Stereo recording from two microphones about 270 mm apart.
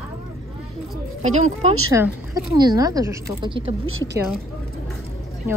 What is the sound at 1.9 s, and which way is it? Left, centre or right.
Speech, centre.